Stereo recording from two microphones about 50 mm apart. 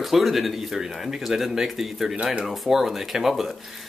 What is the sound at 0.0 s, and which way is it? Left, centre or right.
Speech, centre.